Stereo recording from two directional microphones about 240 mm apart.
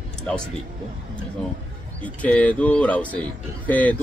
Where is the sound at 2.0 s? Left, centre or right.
Centre.